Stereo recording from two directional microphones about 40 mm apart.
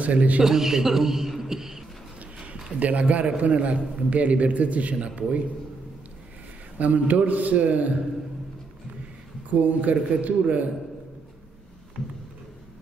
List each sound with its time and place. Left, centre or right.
0.0 s a man's voice: right
0.4 s a man's voice: centre
2.8 s a man's voice: right
6.8 s a man's voice: right
9.5 s a man's voice: right